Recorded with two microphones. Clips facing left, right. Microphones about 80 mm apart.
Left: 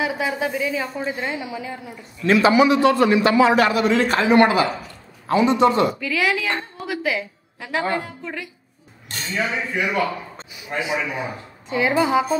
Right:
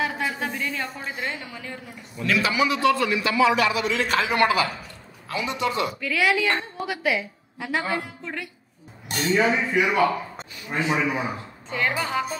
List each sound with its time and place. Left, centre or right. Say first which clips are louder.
0.0 s a woman's voice: left 4 dB; centre
2.2 s a man's voice: left 8 dB; left
5.9 s a woman's voice: left 1 dB; centre
9.3 s a man's voice: right 3 dB; centre
11.9 s a woman's voice: left 8 dB; centre